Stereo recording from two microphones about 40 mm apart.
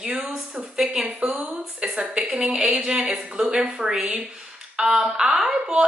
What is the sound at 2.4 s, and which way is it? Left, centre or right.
A woman's voice, right.